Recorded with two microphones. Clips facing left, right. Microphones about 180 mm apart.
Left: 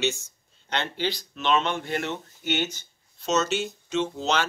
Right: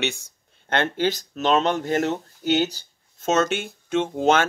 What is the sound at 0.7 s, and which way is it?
Speech, 50° right (ahead or behind).